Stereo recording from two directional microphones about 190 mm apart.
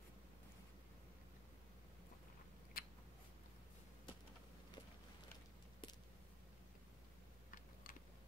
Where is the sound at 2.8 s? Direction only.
50° left (ahead or behind).